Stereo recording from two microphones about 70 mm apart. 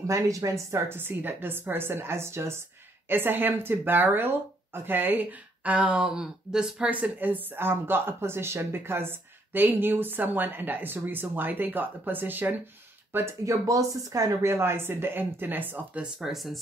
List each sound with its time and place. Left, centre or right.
0.0 s speech: right
0.7 s speech: right; by 6.9 s centre
6.9 s speech: right
13.5 s speech: right
16.0 s speech: centre